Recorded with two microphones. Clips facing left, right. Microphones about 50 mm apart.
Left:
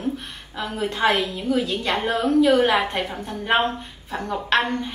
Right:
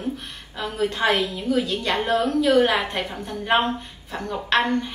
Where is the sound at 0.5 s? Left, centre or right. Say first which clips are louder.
Right 1 dB; centre.